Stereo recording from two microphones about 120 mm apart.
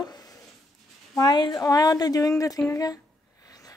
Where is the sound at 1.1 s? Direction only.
35° left (ahead or behind).